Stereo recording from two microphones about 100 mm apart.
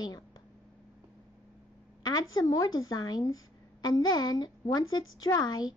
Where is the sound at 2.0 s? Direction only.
40° left (ahead or behind).